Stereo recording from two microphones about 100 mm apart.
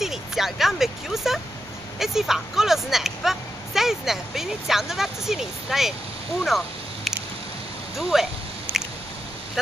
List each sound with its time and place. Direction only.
0.0 s vehicle: 5° right (ahead or behind)
2.0 s speech: 5° right (ahead or behind)
7.1 s a sound: centre (ahead or behind)
8.0 s speech: 5° right (ahead or behind)
8.7 s squish: 20° right (ahead or behind)